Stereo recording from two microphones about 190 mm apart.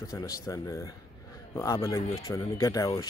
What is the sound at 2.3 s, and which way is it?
Speech, 15° left (ahead or behind).